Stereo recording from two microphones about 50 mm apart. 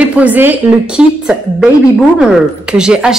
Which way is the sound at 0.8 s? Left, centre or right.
Centre.